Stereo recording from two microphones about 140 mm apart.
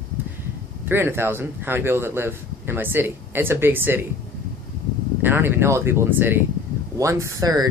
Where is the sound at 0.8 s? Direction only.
15° right (ahead or behind).